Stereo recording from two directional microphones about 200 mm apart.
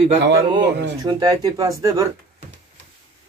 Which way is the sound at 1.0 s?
20° right (ahead or behind).